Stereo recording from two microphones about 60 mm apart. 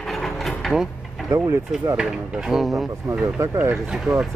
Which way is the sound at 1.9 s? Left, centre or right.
Centre.